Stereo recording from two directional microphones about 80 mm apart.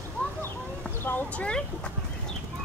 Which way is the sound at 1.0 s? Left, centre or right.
Left.